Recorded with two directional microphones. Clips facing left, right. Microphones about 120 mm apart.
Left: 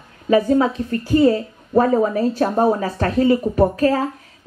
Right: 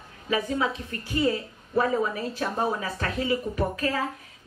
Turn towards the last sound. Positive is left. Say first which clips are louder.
# left 11 dB
turn(degrees=40)  # may be behind; listen again after turning